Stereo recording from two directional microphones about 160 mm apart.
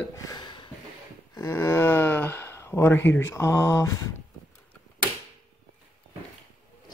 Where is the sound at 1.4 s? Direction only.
15° left (ahead or behind).